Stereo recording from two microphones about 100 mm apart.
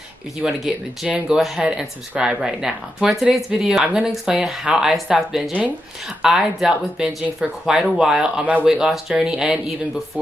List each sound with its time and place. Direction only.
0.4 s speech: 5° right (ahead or behind)
6.2 s speech: 5° right (ahead or behind)